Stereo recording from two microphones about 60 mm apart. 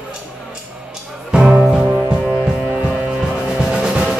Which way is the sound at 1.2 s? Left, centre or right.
Centre.